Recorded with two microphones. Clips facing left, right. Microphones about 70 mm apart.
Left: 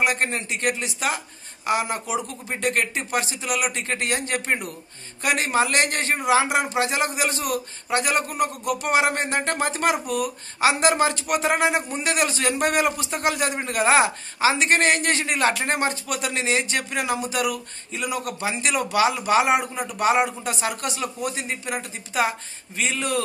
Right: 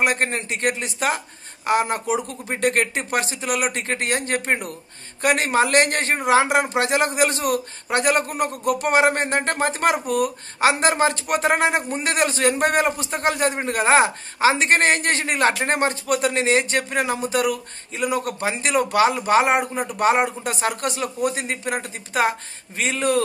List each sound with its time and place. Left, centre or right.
0.0 s a man's voice: right